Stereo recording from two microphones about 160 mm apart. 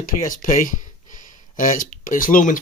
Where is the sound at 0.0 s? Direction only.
55° left (ahead or behind).